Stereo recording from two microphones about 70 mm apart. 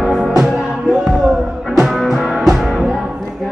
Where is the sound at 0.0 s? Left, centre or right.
Centre.